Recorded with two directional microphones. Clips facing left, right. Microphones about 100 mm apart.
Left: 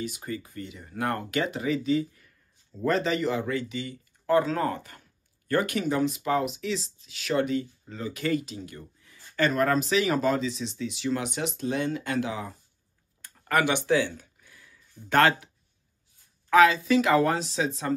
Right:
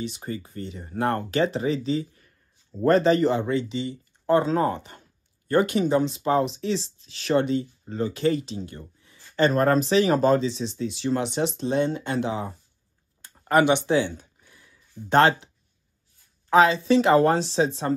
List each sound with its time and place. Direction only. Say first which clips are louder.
0.0 s speech: right 2 dB; 30° right (ahead or behind)
2.8 s speech: right 7 dB; 40° right (ahead or behind)
13.2 s a sound: right 5 dB; 20° right (ahead or behind)
16.4 s speech: right 1 dB; 25° right (ahead or behind)